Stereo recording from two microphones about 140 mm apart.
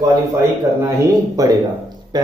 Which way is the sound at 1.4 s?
25° right (ahead or behind).